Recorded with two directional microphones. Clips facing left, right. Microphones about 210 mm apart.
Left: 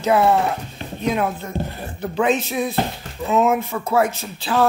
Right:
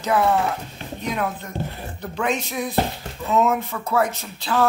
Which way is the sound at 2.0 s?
25° left (ahead or behind).